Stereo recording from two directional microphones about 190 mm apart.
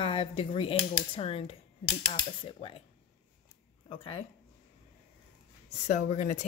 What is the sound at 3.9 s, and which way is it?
Speech, 30° left (ahead or behind).